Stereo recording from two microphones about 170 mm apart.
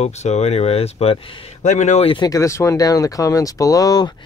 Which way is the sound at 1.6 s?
45° left (ahead or behind).